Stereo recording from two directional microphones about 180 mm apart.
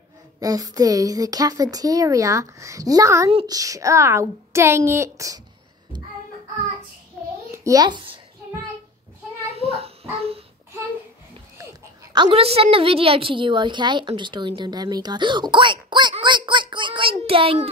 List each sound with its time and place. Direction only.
0.4 s a woman's voice: 20° right (ahead or behind)
3.3 s speech: 30° right (ahead or behind)
3.5 s a child's voice: 20° right (ahead or behind)
7.5 s a child's voice: 20° right (ahead or behind)
9.4 s a sound: 35° right (ahead or behind)
12.1 s a woman's voice: 25° right (ahead or behind)